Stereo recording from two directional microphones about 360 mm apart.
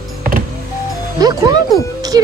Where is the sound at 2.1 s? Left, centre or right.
Centre.